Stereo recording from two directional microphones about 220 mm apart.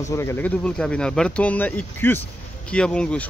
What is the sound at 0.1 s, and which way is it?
Speech, 15° left (ahead or behind).